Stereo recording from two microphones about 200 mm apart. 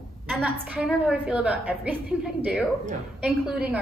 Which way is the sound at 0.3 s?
Centre (ahead or behind).